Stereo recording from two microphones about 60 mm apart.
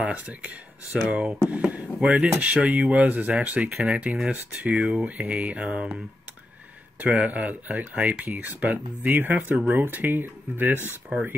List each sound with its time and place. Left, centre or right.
0.0 s speech: right
0.9 s speech: centre
4.7 s speech: centre
5.0 s speech: right
7.1 s speech: right